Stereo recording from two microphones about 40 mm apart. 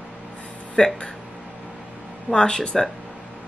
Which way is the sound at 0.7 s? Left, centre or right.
Left.